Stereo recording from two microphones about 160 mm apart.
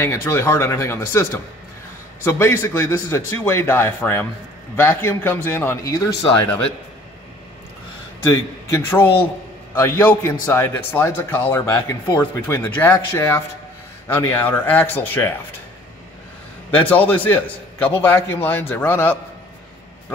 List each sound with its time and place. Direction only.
0.0 s speech: 15° left (ahead or behind)
8.3 s speech: 15° left (ahead or behind)
16.7 s speech: 10° left (ahead or behind)